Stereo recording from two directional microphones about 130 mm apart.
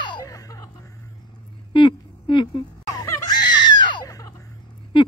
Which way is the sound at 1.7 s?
40° left (ahead or behind).